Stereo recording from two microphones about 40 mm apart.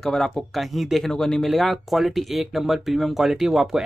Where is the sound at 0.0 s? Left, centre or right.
Centre.